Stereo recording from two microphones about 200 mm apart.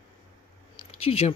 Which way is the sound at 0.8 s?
30° left (ahead or behind).